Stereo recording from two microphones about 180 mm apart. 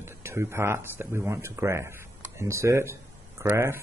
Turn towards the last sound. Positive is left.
turn(degrees=-15)  # may be behind; listen again after turning